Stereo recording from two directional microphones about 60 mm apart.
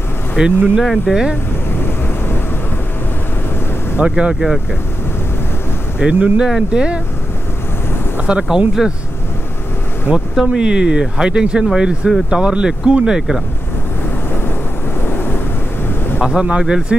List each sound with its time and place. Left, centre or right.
0.4 s speech: centre
0.7 s speech: centre
4.0 s speech: centre
4.3 s speech: centre
5.9 s speech: right
8.5 s speech: centre
10.1 s speech: centre
16.2 s speech: centre